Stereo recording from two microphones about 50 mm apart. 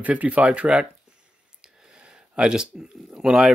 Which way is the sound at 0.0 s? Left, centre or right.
Right.